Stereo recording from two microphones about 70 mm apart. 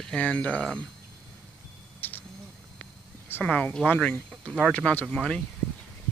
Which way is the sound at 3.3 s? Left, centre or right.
Left.